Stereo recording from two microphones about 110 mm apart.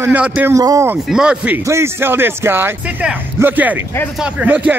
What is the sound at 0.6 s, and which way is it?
Speech, 30° right (ahead or behind).